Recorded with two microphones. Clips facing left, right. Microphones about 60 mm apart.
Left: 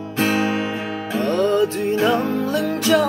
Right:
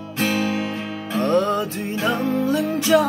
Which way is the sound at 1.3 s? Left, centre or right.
Right.